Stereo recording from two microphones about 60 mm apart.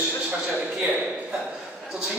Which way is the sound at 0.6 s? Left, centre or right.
Right.